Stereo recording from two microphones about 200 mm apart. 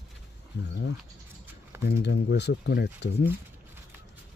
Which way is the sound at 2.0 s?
60° left (ahead or behind).